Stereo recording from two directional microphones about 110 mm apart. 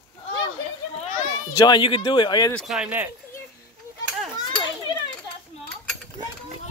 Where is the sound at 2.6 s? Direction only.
5° right (ahead or behind).